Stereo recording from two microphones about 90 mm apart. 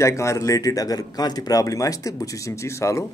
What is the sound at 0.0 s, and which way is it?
Speech, 35° left (ahead or behind).